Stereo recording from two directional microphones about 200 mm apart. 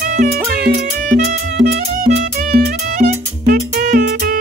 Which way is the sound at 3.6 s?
45° right (ahead or behind).